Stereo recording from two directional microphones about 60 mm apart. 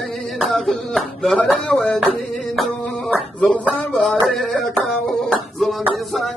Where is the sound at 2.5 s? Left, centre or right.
Centre.